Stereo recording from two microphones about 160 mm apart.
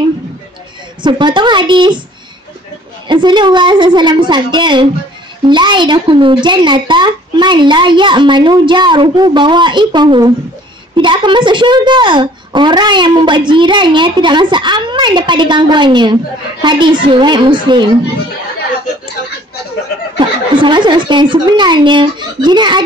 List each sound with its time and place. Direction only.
1.0 s a child's voice: 30° right (ahead or behind)
3.1 s a child's voice: 30° right (ahead or behind)
20.2 s a child's voice: 30° right (ahead or behind)